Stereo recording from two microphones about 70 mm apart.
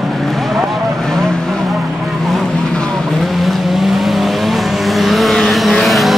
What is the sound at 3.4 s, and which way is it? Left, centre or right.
Vehicle, centre.